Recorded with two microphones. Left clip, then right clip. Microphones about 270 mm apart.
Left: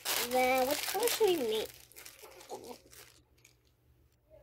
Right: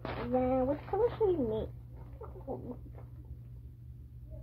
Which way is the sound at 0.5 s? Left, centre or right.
Left.